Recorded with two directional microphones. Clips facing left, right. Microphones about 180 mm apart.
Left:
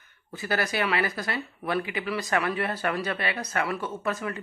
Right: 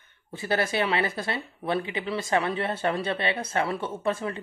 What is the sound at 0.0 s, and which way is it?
Speech, 30° right (ahead or behind).